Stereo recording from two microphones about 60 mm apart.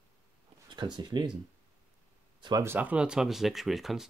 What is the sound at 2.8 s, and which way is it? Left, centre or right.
Speech, right.